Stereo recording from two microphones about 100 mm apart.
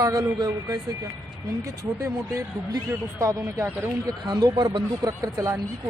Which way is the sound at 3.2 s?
30° right (ahead or behind).